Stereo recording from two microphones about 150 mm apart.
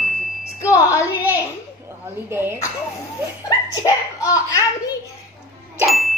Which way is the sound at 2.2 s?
15° right (ahead or behind).